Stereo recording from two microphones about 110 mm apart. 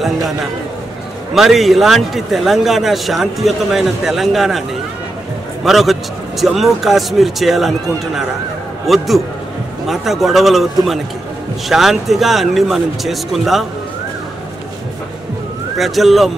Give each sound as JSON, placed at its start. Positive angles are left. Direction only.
{"t": 1.3, "sound": "a man's voice", "side_deg": 0}
{"t": 8.8, "sound": "a man's voice", "side_deg": 0}
{"t": 15.8, "sound": "a man's voice", "side_deg": 0}